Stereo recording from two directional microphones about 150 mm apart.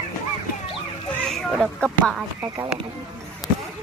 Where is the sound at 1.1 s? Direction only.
5° left (ahead or behind).